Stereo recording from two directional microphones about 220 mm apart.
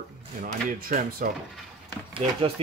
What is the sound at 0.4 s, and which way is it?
Speech, 40° right (ahead or behind).